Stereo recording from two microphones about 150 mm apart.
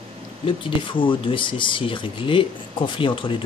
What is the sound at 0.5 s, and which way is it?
Speech, 35° left (ahead or behind).